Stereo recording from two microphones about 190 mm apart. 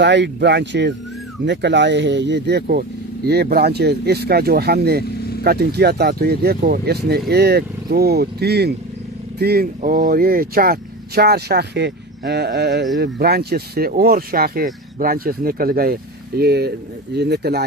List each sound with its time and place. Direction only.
0.0 s speech: 65° right (ahead or behind)